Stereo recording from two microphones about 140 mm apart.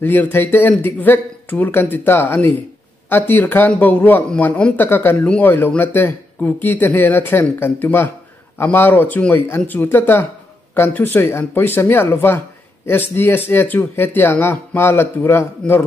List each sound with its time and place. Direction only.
0.0 s speech: 15° left (ahead or behind)